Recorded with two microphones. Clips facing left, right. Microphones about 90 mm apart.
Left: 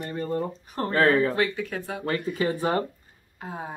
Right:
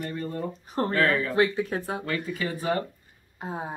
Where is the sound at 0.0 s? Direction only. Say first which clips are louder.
Left 3 dB; 30° left (ahead or behind).